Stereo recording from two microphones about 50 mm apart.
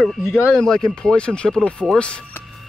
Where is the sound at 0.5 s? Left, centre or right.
Centre.